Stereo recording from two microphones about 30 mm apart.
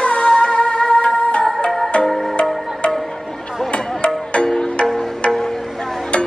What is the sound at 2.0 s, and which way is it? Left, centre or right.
Music, centre.